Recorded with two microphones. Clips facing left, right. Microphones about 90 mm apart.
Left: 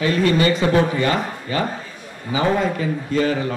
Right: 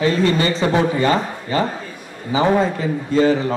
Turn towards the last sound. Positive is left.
turn(degrees=-30)  # may be behind; listen again after turning